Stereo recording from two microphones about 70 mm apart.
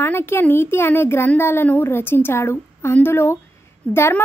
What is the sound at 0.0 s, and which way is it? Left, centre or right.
Speech, left.